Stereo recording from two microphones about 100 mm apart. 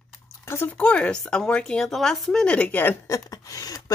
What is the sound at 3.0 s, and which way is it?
Speech, 35° left (ahead or behind).